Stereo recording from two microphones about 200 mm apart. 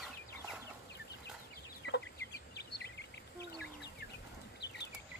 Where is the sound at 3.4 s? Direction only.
55° left (ahead or behind).